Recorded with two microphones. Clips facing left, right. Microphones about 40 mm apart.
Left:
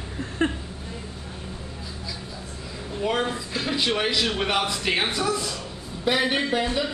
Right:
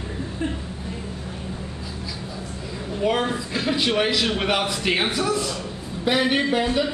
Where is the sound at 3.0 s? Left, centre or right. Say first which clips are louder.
Right 3 dB; centre.